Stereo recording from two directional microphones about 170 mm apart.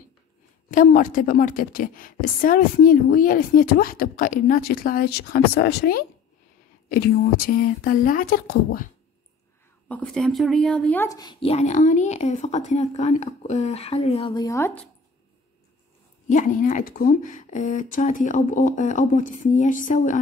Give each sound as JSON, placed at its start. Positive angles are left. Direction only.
{"t": 0.7, "sound": "a woman's voice", "side_deg": 50}
{"t": 9.8, "sound": "speech", "side_deg": 5}
{"t": 11.1, "sound": "a woman's voice", "side_deg": 25}
{"t": 14.4, "sound": "speech", "side_deg": 15}
{"t": 16.3, "sound": "speech", "side_deg": 50}